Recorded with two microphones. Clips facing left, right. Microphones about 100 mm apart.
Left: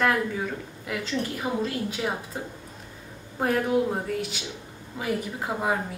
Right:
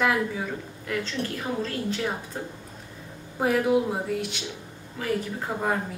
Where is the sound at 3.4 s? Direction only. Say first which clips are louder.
Right 1 dB; 5° right (ahead or behind).